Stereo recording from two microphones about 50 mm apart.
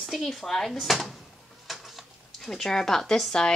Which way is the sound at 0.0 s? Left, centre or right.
Centre.